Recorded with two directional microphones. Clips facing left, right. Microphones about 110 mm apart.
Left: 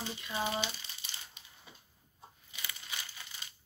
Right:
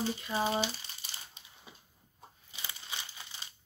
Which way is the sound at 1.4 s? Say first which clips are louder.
Right 1 dB; 30° right (ahead or behind).